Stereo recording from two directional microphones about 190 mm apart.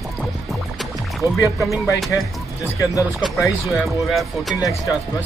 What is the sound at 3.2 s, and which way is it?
Speech, 15° left (ahead or behind).